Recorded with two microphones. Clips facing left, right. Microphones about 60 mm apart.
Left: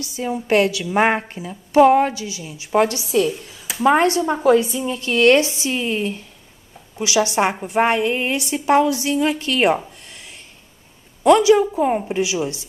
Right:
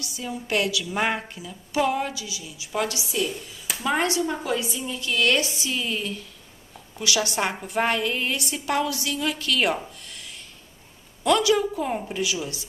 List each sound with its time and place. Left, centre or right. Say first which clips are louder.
0.0 s a woman's voice: left 8 dB; left
10.0 s a sound: left 1 dB; left
11.2 s a woman's voice: left 8 dB; left